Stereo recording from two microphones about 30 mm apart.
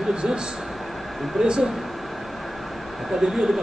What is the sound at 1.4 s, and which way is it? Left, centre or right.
Speech, centre.